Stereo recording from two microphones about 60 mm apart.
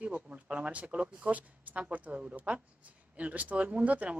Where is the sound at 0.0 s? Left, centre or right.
Right.